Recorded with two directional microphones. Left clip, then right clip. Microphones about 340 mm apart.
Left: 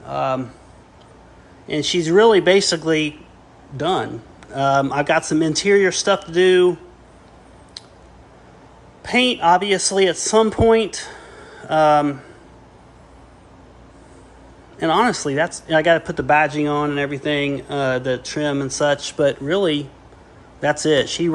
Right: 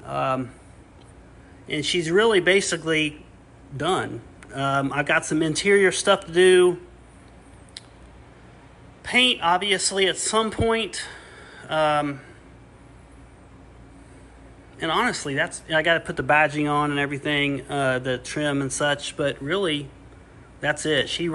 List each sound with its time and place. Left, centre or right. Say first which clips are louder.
0.0 s speech: left 3 dB; centre
1.7 s speech: left 5 dB; centre
9.0 s speech: left 3 dB; centre
14.8 s speech: left 6 dB; centre